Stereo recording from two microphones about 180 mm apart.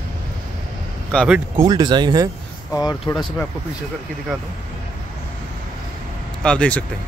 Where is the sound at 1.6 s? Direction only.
25° right (ahead or behind).